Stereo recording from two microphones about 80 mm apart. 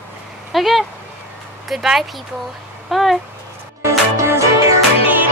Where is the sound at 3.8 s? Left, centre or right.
Right.